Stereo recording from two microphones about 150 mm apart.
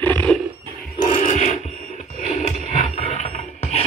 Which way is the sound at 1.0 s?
60° left (ahead or behind).